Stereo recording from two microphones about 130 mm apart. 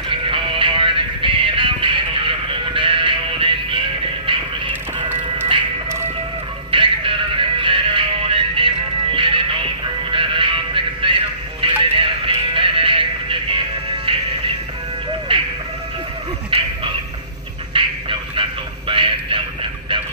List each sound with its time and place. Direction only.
0.1 s music: 40° right (ahead or behind)
6.7 s music: 40° right (ahead or behind)
15.3 s music: 40° right (ahead or behind)
16.4 s bow-wow: 45° right (ahead or behind)
17.8 s music: 40° right (ahead or behind)
18.3 s a sound: 40° right (ahead or behind)